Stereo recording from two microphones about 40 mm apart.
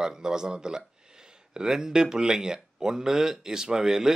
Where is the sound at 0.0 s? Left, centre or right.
Centre.